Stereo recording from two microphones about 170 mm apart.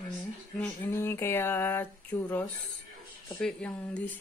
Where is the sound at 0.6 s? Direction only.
10° left (ahead or behind).